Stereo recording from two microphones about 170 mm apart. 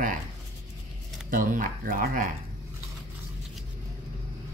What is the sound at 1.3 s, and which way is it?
Speech, 55° right (ahead or behind).